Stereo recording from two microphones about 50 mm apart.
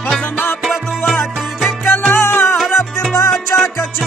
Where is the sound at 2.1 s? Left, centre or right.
Left.